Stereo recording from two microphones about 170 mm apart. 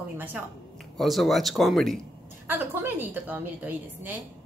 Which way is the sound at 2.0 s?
15° right (ahead or behind).